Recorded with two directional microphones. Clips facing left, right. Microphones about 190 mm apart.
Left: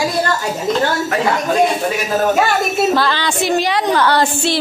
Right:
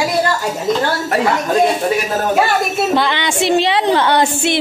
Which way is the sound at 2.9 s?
20° right (ahead or behind).